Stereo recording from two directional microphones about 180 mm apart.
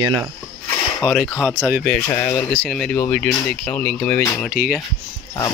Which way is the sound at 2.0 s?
15° left (ahead or behind).